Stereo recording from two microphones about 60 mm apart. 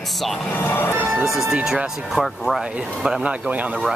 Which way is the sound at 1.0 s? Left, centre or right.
Centre.